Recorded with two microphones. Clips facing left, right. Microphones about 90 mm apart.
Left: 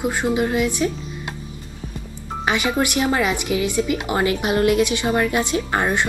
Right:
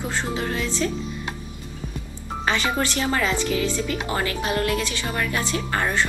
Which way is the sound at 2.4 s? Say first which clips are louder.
Left 3 dB; 10° left (ahead or behind).